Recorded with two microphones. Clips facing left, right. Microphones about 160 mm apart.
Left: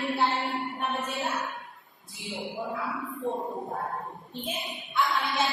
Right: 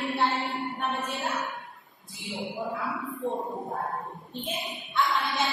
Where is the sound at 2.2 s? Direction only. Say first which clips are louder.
Right 1 dB; centre (ahead or behind).